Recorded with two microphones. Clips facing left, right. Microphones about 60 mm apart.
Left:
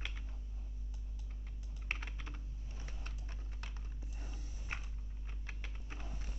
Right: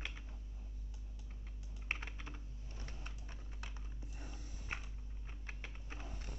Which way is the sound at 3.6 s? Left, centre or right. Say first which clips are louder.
Even; centre.